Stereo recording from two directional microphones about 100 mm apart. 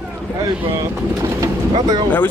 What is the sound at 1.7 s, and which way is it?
Speech, 45° right (ahead or behind).